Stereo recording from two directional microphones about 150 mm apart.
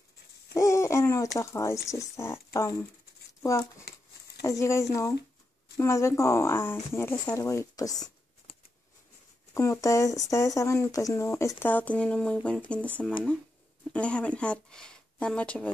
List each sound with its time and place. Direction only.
0.6 s speech: 20° left (ahead or behind)
4.4 s speech: 20° left (ahead or behind)
9.5 s speech: 20° left (ahead or behind)
13.9 s speech: 10° left (ahead or behind)